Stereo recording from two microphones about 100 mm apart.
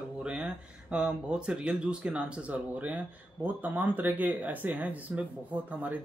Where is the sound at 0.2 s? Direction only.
10° right (ahead or behind).